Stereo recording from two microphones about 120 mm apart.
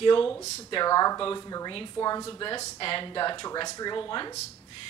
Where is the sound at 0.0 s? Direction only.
45° left (ahead or behind); by 2.4 s 30° left (ahead or behind).